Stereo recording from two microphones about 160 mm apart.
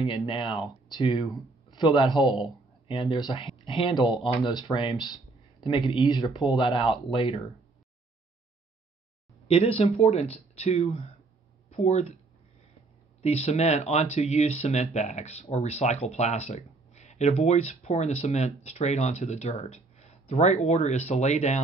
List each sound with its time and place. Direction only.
0.0 s speech: 30° left (ahead or behind)
9.5 s speech: 40° left (ahead or behind)
13.2 s speech: 40° left (ahead or behind)